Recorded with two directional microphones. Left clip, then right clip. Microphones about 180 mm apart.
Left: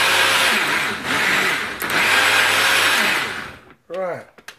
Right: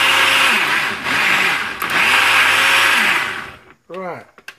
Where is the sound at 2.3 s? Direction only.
Centre (ahead or behind).